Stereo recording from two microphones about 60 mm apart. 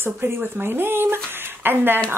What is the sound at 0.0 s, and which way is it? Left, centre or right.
Speech, right.